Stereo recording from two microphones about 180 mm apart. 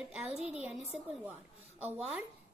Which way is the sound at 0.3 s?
40° right (ahead or behind).